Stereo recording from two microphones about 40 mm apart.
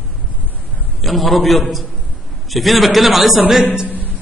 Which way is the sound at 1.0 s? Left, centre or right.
Centre.